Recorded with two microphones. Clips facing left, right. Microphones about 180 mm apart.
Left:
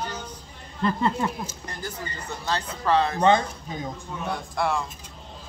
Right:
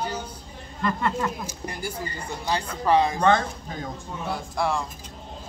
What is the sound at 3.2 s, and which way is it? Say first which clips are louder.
Speech: left 1 dB; 20° left (ahead or behind).